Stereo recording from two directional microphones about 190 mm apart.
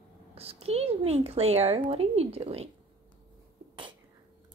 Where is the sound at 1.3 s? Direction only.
30° right (ahead or behind).